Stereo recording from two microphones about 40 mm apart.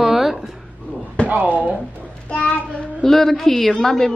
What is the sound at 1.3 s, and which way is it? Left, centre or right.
Speech, right.